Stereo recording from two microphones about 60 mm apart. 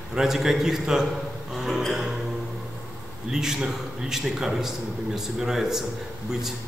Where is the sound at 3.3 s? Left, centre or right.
Centre.